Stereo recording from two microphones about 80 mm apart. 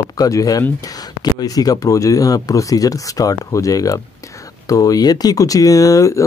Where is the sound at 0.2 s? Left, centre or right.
Left.